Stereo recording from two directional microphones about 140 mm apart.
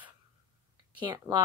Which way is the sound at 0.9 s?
35° right (ahead or behind).